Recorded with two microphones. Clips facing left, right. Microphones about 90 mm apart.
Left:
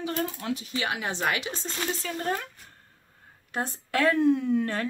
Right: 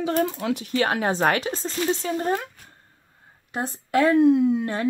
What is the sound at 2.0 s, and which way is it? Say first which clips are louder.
Speech: right 7 dB; 25° right (ahead or behind).